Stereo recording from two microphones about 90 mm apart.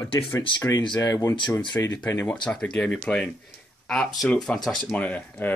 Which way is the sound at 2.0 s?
25° left (ahead or behind).